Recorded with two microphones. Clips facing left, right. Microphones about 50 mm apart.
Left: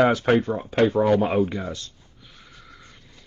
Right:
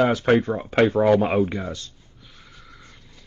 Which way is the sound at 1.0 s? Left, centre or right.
Centre.